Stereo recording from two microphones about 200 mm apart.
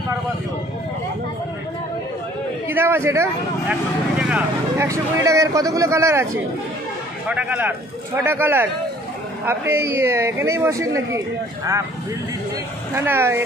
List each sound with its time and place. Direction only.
2.7 s a man's voice: 10° right (ahead or behind)
12.9 s a man's voice: 10° right (ahead or behind)